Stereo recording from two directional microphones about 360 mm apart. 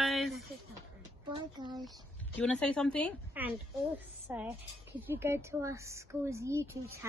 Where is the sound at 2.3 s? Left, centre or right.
Centre.